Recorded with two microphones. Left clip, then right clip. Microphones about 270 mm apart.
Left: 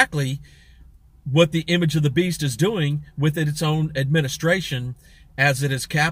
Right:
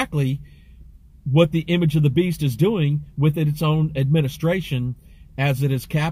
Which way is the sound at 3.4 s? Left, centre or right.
Centre.